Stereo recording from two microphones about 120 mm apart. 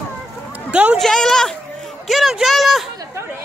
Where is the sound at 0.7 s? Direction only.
10° right (ahead or behind).